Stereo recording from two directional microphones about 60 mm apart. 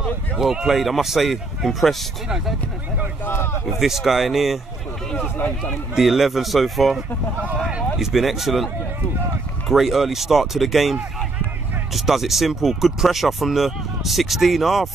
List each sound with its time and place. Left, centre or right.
0.0 s speech: centre
3.6 s speech: centre
5.1 s speech: left
5.9 s speech: centre
9.7 s speech: centre